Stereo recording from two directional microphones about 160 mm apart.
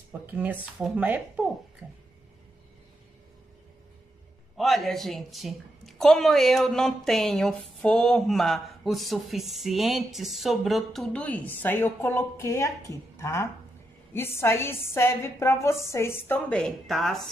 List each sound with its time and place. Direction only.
0.3 s speech: 10° right (ahead or behind)
4.6 s a woman's voice: centre (ahead or behind)